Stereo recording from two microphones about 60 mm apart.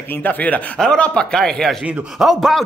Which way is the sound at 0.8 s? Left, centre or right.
Centre.